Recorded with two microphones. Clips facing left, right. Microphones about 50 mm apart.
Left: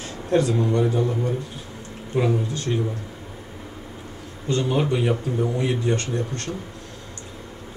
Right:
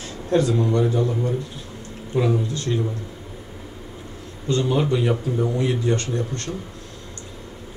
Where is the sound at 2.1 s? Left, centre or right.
Centre.